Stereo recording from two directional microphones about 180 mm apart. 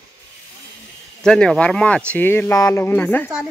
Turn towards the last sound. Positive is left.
turn(degrees=10)  # may be behind; listen again after turning